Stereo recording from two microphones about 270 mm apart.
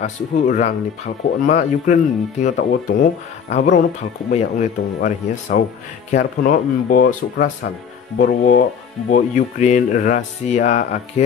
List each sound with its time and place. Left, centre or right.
0.0 s speech: left
4.3 s speech: left